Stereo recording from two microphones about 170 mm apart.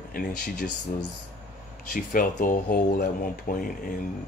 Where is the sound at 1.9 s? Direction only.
50° left (ahead or behind).